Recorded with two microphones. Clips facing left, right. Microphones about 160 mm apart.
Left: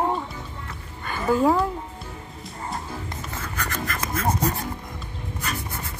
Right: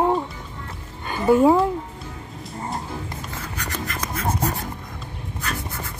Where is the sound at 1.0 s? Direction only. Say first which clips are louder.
Right 5 dB; 20° right (ahead or behind).